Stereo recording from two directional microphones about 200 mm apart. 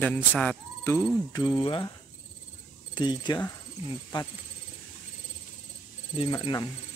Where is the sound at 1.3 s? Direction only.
20° left (ahead or behind).